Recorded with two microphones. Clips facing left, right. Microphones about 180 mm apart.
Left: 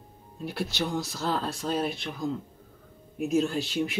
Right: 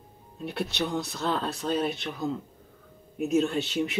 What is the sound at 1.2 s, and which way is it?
Speech, centre (ahead or behind).